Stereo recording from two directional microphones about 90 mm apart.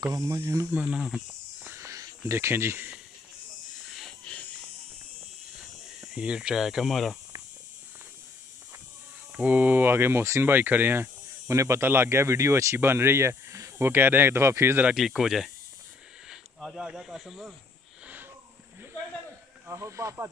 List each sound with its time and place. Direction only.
0.2 s speech: 30° right (ahead or behind)
0.7 s speech: 20° right (ahead or behind)
0.9 s speech: centre (ahead or behind)
1.6 s a sound: 30° right (ahead or behind)
5.9 s speech: 10° right (ahead or behind)
9.3 s speech: 15° right (ahead or behind)
15.0 s speech: 5° right (ahead or behind)
19.7 s speech: 30° right (ahead or behind)